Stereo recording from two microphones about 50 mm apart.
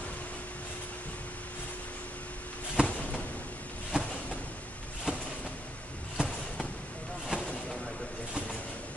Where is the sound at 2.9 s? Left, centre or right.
Left.